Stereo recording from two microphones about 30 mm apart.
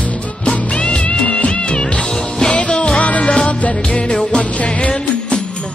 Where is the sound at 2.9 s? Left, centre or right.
Left.